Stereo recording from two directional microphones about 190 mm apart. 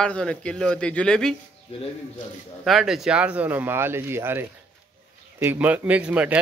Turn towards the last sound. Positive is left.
turn(degrees=-5)  # may be behind; listen again after turning